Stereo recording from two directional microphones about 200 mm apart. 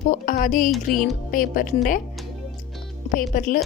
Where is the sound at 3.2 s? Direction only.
45° left (ahead or behind).